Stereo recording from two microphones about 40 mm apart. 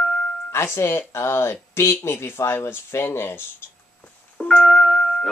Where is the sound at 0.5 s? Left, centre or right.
Left.